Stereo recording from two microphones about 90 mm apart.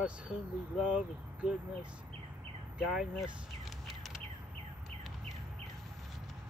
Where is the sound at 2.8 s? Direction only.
5° right (ahead or behind).